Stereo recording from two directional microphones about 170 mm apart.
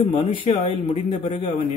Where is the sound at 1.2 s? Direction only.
45° left (ahead or behind).